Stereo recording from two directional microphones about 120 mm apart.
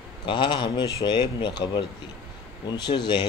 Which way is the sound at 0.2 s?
40° left (ahead or behind).